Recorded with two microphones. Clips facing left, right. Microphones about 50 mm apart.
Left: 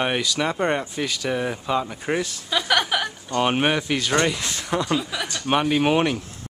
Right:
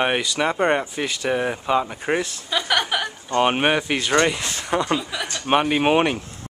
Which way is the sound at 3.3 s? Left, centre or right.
Centre.